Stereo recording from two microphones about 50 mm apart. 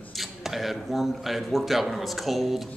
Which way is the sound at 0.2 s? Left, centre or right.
Centre.